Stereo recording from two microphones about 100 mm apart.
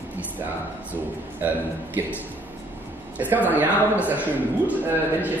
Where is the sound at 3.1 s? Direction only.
15° right (ahead or behind).